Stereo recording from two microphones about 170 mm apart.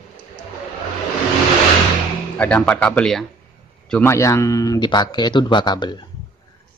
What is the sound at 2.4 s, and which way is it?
Speech, 5° left (ahead or behind).